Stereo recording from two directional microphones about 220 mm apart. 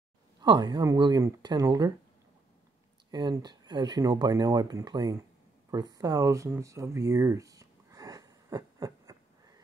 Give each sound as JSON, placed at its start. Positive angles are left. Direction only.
{"t": 0.4, "sound": "speech", "side_deg": -20}
{"t": 3.1, "sound": "speech", "side_deg": -20}